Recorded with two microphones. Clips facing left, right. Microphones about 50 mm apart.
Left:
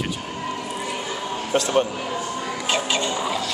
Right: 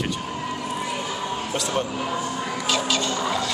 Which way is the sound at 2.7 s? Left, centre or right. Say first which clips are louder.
Left 1 dB; left.